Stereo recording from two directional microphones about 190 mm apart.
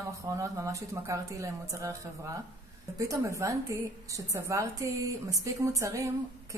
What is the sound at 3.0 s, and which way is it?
A woman's voice, 15° right (ahead or behind).